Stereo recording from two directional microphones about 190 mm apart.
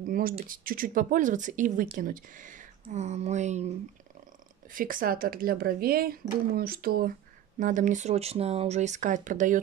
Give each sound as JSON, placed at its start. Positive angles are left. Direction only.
{"t": 0.0, "sound": "speech", "side_deg": -50}
{"t": 7.5, "sound": "speech", "side_deg": -40}